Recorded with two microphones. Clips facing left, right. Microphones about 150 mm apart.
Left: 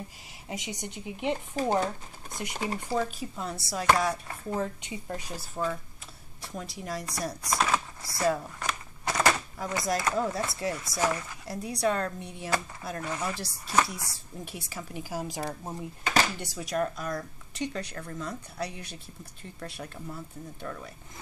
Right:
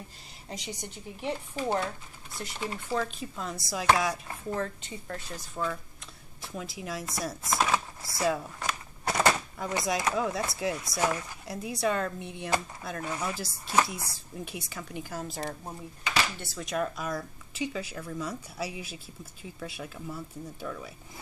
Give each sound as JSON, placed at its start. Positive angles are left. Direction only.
{"t": 0.5, "sound": "a woman's voice", "side_deg": 15}
{"t": 1.6, "sound": "speech", "side_deg": 40}
{"t": 2.9, "sound": "speech", "side_deg": 10}
{"t": 4.6, "sound": "a woman's voice", "side_deg": 15}
{"t": 9.3, "sound": "door", "side_deg": -5}
{"t": 9.9, "sound": "a woman's voice", "side_deg": -5}
{"t": 16.6, "sound": "speech", "side_deg": 0}